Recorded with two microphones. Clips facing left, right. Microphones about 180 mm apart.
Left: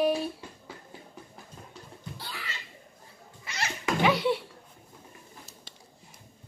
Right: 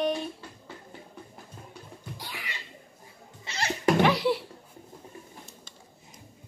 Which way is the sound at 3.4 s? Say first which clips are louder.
Right 2 dB; 30° right (ahead or behind).